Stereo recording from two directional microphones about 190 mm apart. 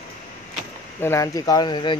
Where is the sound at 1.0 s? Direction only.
15° left (ahead or behind).